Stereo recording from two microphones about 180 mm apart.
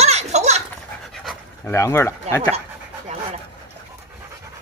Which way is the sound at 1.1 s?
Centre (ahead or behind).